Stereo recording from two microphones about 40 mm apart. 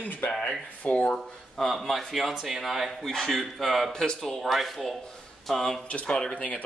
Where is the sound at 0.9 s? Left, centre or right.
Left.